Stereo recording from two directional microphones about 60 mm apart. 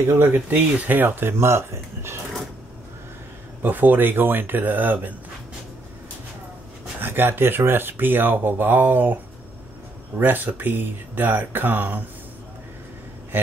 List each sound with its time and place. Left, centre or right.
0.0 s speech: right
0.3 s speech: right
3.6 s speech: right
7.0 s speech: right